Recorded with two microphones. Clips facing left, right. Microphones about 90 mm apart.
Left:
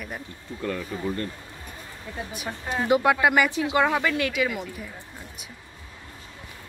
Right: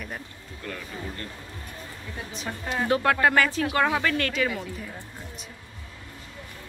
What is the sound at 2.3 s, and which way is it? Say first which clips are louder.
Speech: even; 10° left (ahead or behind).